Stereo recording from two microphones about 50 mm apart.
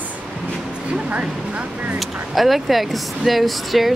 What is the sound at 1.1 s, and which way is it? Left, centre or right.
Vehicle, right.